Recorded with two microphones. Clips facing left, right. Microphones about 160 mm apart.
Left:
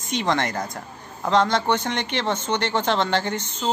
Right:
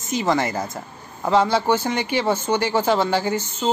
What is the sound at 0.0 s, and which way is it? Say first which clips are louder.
A woman's voice: right 2 dB; 5° right (ahead or behind).